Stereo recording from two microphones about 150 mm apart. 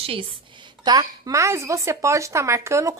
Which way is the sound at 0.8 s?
25° right (ahead or behind).